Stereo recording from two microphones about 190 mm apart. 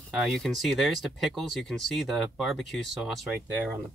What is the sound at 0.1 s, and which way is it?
Speech, centre (ahead or behind).